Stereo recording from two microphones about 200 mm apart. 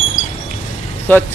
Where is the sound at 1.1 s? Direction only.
10° left (ahead or behind).